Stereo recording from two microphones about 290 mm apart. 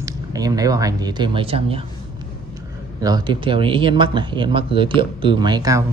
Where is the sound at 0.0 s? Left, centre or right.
Centre.